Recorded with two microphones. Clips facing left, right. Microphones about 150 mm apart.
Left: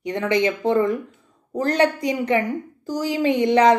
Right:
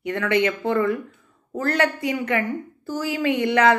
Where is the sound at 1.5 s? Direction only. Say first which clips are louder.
Left 3 dB; 20° left (ahead or behind).